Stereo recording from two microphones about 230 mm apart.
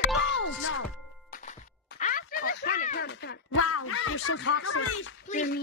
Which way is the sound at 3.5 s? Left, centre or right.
Left.